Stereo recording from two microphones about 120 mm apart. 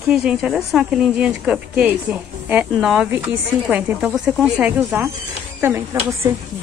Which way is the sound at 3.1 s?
15° right (ahead or behind).